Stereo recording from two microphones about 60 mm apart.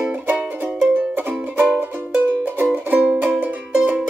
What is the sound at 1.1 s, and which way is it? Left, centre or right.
Music, right.